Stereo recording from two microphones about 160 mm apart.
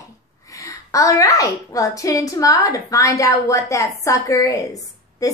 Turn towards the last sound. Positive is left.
turn(degrees=20)  # may be behind; listen again after turning